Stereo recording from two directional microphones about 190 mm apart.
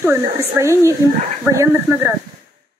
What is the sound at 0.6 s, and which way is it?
Speech, 15° right (ahead or behind).